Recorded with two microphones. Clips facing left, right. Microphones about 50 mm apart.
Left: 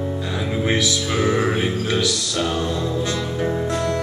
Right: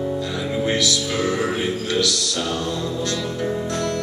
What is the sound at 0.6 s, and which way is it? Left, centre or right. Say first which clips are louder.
Music: even; centre.